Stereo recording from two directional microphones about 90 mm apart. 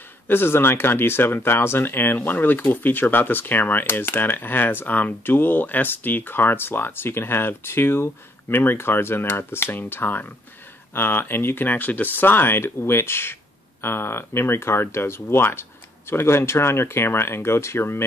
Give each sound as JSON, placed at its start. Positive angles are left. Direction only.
{"t": 0.3, "sound": "speech", "side_deg": 25}